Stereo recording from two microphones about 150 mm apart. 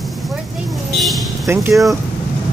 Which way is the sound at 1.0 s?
Centre (ahead or behind).